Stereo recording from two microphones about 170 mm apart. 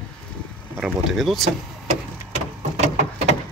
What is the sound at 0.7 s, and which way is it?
Speech, centre (ahead or behind).